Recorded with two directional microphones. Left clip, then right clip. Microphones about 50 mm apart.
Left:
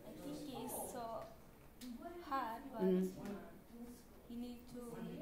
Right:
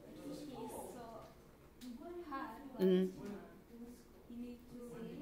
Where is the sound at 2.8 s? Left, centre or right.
Right.